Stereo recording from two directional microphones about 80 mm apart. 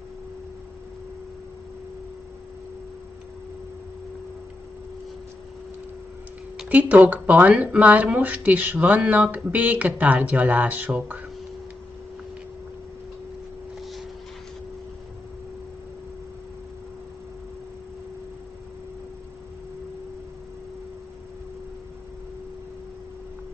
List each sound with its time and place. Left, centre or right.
6.7 s speech: centre